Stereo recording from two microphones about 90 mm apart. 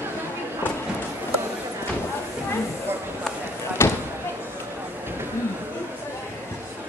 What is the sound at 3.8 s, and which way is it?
Basketball bounce, 30° left (ahead or behind).